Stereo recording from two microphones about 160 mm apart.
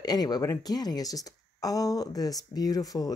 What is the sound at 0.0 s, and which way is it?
Speech, 25° left (ahead or behind).